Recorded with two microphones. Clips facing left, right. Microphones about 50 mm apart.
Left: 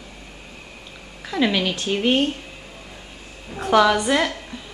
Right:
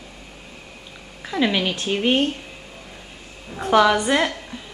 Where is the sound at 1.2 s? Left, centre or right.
Centre.